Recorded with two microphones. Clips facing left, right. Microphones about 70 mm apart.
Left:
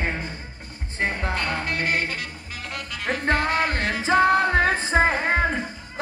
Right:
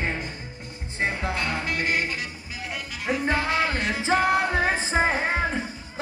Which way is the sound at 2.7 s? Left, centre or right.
Left.